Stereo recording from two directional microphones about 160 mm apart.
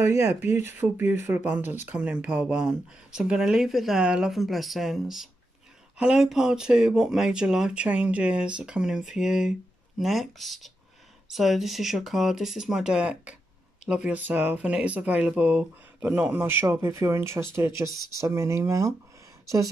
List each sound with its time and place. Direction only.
0.0 s speech: 15° right (ahead or behind)